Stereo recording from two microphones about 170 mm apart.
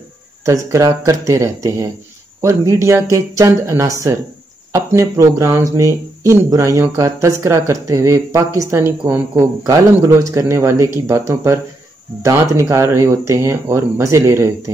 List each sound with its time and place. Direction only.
0.5 s speech: 20° right (ahead or behind)